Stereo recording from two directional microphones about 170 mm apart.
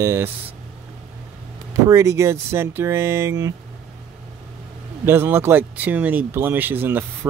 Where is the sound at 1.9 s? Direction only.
15° right (ahead or behind).